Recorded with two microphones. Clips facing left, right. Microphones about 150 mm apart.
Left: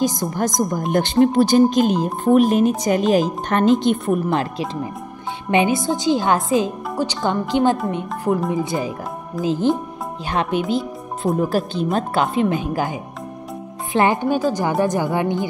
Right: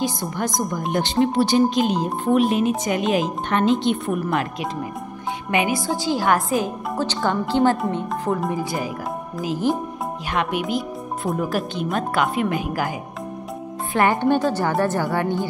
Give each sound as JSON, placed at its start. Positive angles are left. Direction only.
{"t": 0.0, "sound": "speech", "side_deg": 40}
{"t": 4.1, "sound": "a woman's voice", "side_deg": 30}
{"t": 13.9, "sound": "a woman's voice", "side_deg": 20}
{"t": 14.2, "sound": "speech", "side_deg": 5}